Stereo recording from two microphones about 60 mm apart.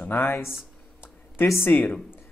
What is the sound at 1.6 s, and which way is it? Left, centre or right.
Speech, left.